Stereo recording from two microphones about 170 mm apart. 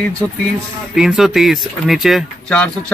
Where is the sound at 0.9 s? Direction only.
5° right (ahead or behind).